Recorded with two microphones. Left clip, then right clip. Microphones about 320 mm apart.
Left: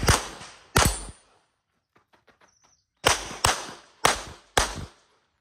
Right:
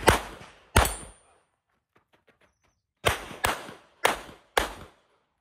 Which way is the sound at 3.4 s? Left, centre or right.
Centre.